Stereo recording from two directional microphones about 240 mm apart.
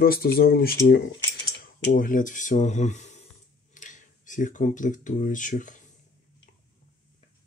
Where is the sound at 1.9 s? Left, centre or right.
Left.